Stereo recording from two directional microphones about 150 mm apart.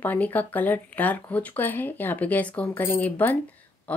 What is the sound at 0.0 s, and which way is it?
Speech, 10° left (ahead or behind).